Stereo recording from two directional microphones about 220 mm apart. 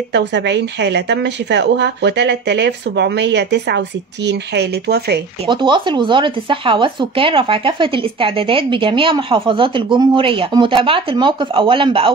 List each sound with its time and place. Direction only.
0.1 s speech: 50° right (ahead or behind)
5.5 s speech: 20° right (ahead or behind)